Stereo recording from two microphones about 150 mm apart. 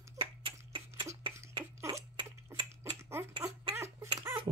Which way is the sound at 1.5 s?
25° right (ahead or behind).